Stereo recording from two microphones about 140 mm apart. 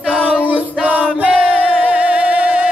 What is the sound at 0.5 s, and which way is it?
Music, 10° right (ahead or behind).